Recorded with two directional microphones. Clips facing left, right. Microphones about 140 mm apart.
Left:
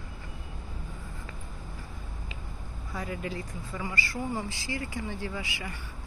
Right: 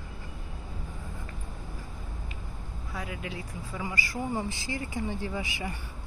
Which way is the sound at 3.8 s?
15° right (ahead or behind).